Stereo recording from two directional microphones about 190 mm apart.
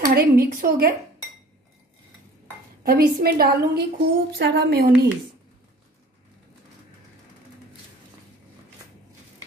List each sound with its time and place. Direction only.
0.0 s a woman's voice: 55° right (ahead or behind)
2.8 s a woman's voice: 50° right (ahead or behind)